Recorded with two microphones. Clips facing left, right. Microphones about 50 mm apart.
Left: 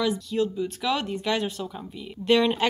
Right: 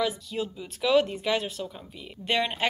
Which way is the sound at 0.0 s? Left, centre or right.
Centre.